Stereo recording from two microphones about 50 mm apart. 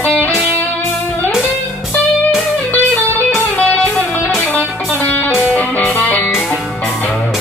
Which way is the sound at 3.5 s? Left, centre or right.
Left.